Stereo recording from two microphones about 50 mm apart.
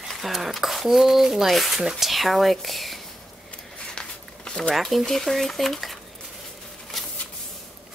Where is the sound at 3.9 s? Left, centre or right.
Centre.